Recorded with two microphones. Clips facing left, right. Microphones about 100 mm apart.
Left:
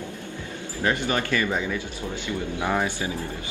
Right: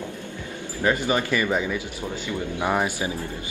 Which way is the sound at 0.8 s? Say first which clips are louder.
Right 2 dB; 15° right (ahead or behind).